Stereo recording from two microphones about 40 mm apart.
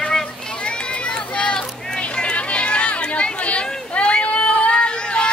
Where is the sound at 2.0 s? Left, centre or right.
Left.